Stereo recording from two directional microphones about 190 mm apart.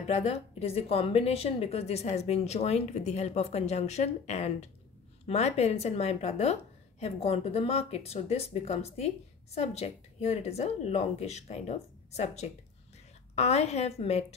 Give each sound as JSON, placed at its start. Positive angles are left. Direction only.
{"t": 0.0, "sound": "a woman's voice", "side_deg": 35}